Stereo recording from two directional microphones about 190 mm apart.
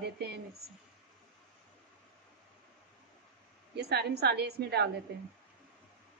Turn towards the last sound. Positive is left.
turn(degrees=-60)  # may be behind; listen again after turning